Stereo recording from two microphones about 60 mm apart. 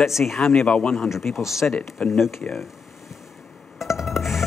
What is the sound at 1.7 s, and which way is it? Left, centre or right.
Speech, centre.